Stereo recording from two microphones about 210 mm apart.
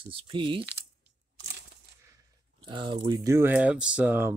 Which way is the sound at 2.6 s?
20° right (ahead or behind).